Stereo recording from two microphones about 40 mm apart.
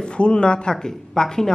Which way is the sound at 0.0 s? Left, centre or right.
Left.